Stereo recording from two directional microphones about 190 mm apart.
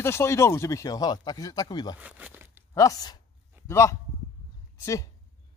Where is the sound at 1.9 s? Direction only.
5° right (ahead or behind).